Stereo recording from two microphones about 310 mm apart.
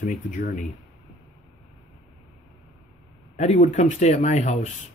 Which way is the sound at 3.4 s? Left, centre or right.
Left.